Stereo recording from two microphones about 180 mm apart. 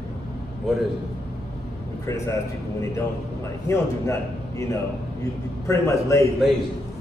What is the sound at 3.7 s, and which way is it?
Speech, 20° left (ahead or behind).